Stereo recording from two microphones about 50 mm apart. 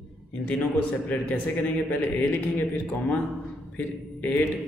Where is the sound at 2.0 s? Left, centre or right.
Left.